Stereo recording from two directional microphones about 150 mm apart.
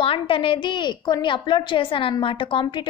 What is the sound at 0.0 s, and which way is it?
A woman's voice, 35° left (ahead or behind).